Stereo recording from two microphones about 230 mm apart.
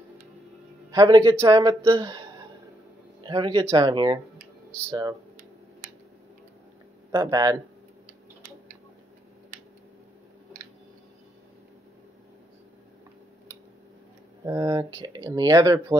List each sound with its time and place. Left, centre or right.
0.9 s speech: centre
3.3 s speech: right
7.1 s speech: centre
14.4 s speech: centre